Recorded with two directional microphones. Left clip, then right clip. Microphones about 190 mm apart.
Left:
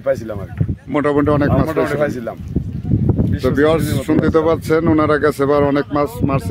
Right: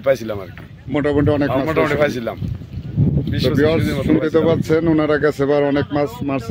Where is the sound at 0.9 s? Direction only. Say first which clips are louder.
Left 2 dB; 10° left (ahead or behind).